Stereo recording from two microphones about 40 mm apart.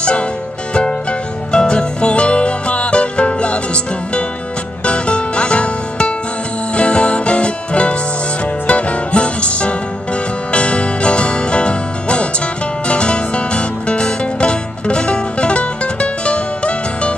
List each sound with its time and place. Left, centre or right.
1.5 s music: left